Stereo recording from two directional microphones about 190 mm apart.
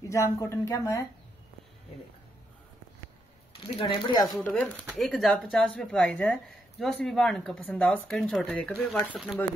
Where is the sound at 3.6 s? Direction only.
25° left (ahead or behind).